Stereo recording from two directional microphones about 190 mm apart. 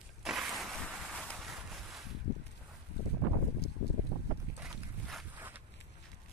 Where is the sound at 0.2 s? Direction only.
Centre (ahead or behind).